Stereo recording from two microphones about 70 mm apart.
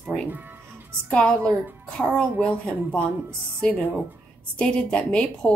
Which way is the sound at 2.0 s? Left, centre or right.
Centre.